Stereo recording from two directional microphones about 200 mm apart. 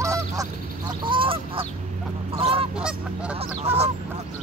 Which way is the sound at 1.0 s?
25° right (ahead or behind).